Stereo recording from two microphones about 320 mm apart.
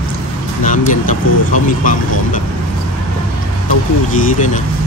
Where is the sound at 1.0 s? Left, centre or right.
Left.